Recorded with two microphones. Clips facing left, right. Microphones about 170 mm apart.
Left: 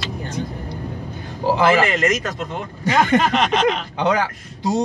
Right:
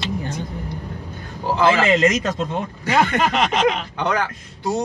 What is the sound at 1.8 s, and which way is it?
Speech, 20° right (ahead or behind).